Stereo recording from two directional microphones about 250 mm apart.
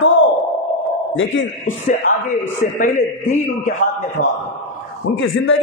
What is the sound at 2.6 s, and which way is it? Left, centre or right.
A man's voice, left.